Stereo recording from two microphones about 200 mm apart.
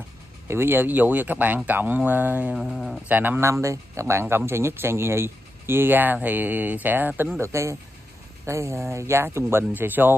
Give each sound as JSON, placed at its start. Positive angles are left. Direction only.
{"t": 0.5, "sound": "speech", "side_deg": -10}